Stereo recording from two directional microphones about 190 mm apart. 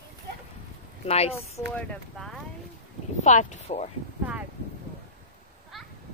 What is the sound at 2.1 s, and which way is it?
Speech, centre (ahead or behind).